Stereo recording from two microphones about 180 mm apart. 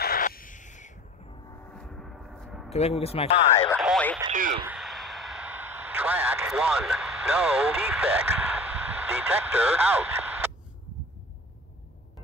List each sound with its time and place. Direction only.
0.0 s crow: 55° left (ahead or behind)
1.7 s gong: 5° left (ahead or behind)
2.7 s speech: 35° left (ahead or behind)
3.7 s speech: 5° right (ahead or behind)
4.3 s speech: 45° right (ahead or behind)
4.6 s a sound: centre (ahead or behind)